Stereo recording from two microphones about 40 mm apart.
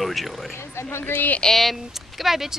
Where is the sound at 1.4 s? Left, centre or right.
Centre.